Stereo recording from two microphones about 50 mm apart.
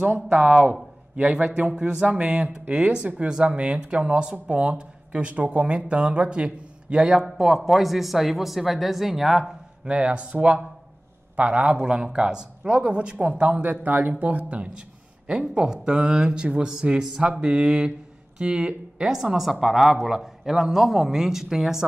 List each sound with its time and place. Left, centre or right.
0.1 s speech: right
7.2 s speech: centre
9.8 s speech: right
13.7 s speech: right
14.2 s a man's voice: right; by 21.8 s centre